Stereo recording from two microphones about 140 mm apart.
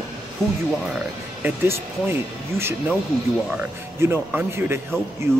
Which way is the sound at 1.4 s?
15° right (ahead or behind).